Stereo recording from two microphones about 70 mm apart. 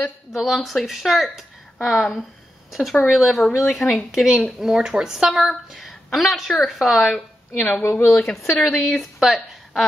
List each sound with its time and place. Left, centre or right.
0.3 s speech: centre
7.5 s speech: left
8.1 s speech: centre